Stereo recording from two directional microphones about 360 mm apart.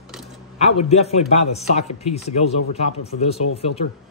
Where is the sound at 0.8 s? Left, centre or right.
Centre.